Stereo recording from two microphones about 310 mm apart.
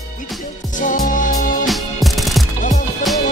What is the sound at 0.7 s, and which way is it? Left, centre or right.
Music, left.